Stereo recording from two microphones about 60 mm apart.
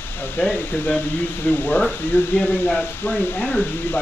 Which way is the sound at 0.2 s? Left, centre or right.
Left.